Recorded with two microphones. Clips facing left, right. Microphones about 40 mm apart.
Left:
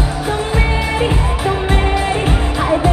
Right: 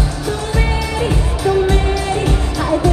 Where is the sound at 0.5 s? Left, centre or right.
Left.